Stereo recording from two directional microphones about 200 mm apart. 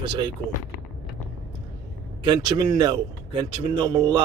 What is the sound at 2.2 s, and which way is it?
A man's voice, 20° right (ahead or behind).